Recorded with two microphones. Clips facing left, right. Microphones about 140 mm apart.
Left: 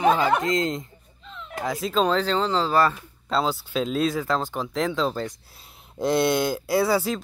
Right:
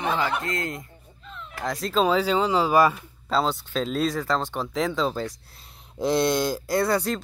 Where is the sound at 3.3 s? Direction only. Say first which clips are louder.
Even; centre (ahead or behind).